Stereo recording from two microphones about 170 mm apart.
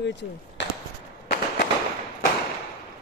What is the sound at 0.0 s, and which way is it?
Speech, 90° left.